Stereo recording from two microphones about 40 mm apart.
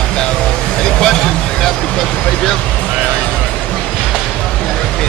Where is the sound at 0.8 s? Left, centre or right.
Centre.